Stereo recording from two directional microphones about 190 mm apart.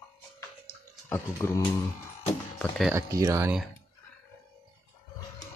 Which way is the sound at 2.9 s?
15° right (ahead or behind).